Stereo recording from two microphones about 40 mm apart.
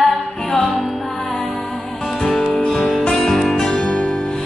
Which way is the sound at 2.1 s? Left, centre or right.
Centre.